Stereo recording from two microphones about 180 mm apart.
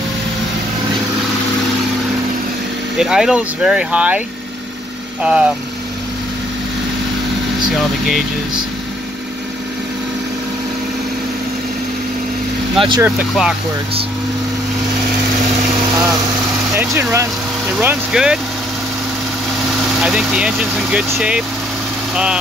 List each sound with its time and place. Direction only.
3.0 s speech: 5° right (ahead or behind)
5.2 s speech: 5° right (ahead or behind)
12.7 s speech: 25° right (ahead or behind)
13.0 s speech: 5° right (ahead or behind)
16.7 s speech: 15° right (ahead or behind)
20.0 s speech: 5° right (ahead or behind)